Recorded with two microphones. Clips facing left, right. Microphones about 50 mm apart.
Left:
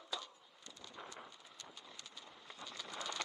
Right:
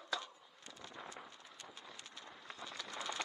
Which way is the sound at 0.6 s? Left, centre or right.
Centre.